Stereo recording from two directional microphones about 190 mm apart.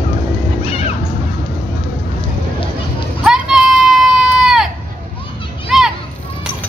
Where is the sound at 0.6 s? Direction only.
30° left (ahead or behind).